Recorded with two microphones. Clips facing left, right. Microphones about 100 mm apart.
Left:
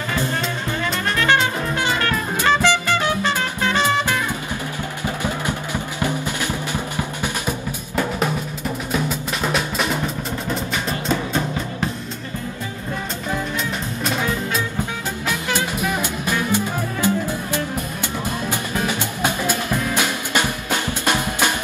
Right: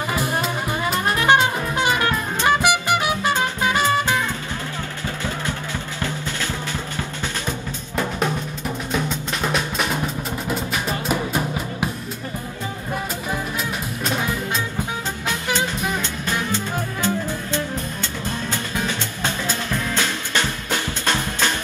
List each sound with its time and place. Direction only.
0.1 s music: 15° right (ahead or behind)
5.0 s music: 15° left (ahead or behind)
8.9 s music: centre (ahead or behind)
15.2 s music: 15° left (ahead or behind)